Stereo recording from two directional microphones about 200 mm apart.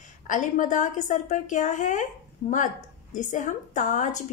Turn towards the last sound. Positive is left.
turn(degrees=35)  # may be behind; listen again after turning